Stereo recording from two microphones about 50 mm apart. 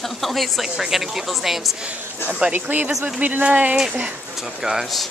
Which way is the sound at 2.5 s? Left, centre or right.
Right.